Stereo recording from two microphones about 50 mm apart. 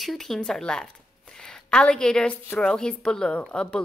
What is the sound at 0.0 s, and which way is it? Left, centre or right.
Speech, centre.